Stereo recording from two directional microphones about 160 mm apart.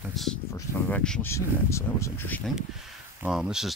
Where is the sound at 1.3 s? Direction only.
15° left (ahead or behind).